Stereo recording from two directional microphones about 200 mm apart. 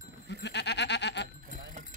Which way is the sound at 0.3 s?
60° left (ahead or behind).